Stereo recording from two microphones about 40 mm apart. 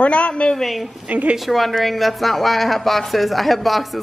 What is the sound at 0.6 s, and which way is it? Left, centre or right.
Speech, centre.